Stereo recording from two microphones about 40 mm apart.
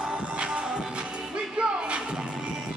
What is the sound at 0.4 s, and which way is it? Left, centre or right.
Music, right.